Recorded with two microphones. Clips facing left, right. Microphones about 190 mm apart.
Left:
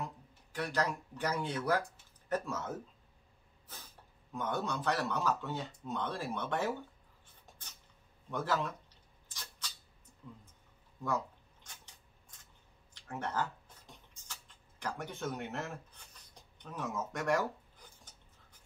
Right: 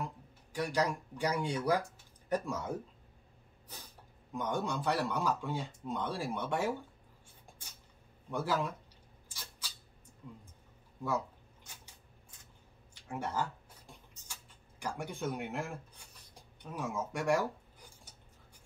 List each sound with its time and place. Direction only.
0.0 s speech: 10° right (ahead or behind)
4.3 s speech: 15° right (ahead or behind)
7.2 s a sound: 10° right (ahead or behind)
8.3 s speech: 10° right (ahead or behind)
9.3 s rodents: 10° right (ahead or behind)
11.1 s camera: 10° right (ahead or behind)
12.9 s a sound: 10° right (ahead or behind)